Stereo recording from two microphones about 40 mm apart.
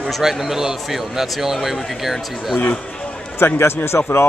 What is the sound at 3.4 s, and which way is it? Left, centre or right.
Speech, left.